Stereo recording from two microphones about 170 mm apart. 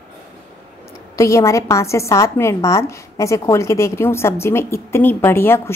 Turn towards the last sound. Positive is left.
turn(degrees=15)  # may be behind; listen again after turning